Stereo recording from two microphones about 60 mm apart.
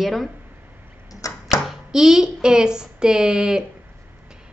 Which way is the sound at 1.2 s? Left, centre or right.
Left.